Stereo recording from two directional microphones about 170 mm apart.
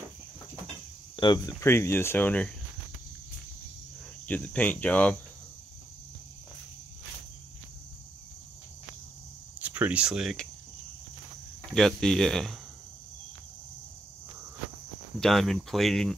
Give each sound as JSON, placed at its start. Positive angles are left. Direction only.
{"t": 1.1, "sound": "speech", "side_deg": 25}
{"t": 1.6, "sound": "speech", "side_deg": 15}
{"t": 4.3, "sound": "speech", "side_deg": 10}
{"t": 9.6, "sound": "speech", "side_deg": -10}
{"t": 11.7, "sound": "speech", "side_deg": 5}
{"t": 15.1, "sound": "speech", "side_deg": 0}